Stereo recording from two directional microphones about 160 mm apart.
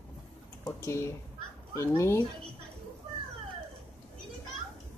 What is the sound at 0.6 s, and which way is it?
Speech, 15° left (ahead or behind).